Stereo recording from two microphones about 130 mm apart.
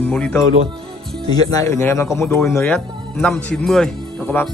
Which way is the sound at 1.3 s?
30° left (ahead or behind).